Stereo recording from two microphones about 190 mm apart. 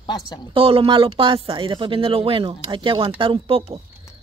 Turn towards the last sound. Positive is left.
turn(degrees=-30)  # may be behind; listen again after turning